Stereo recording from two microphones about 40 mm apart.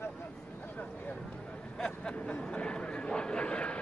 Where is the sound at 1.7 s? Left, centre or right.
Centre.